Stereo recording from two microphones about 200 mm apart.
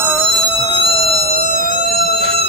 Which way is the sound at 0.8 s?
30° left (ahead or behind).